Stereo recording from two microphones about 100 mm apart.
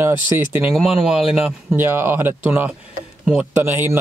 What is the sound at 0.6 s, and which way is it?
Speech, 5° right (ahead or behind).